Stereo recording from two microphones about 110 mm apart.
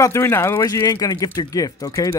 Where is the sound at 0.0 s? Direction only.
25° left (ahead or behind).